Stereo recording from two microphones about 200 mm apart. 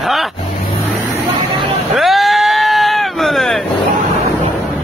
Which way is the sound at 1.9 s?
Centre (ahead or behind).